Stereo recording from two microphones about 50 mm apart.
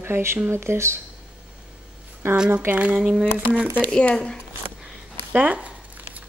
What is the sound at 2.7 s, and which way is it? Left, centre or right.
Speech, right.